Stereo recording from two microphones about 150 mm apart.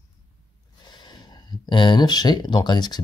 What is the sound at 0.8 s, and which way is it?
Speech, 30° left (ahead or behind).